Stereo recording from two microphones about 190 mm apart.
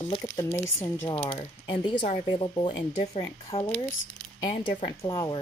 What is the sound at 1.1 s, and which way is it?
Speech, 30° left (ahead or behind).